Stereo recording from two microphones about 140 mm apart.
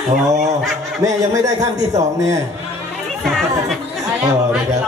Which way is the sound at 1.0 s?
25° right (ahead or behind).